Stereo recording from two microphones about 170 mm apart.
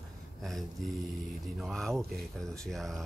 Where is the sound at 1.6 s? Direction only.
Centre (ahead or behind).